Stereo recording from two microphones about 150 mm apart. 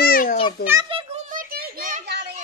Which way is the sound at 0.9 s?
35° right (ahead or behind).